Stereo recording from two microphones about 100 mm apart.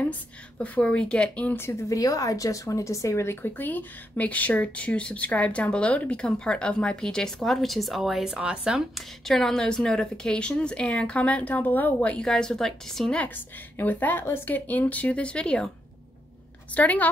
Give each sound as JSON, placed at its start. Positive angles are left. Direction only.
{"t": 0.6, "sound": "speech", "side_deg": 10}
{"t": 13.7, "sound": "speech", "side_deg": 20}
{"t": 16.7, "sound": "speech", "side_deg": 15}